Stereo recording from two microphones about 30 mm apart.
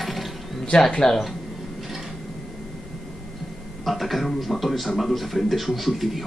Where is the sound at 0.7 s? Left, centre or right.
Left.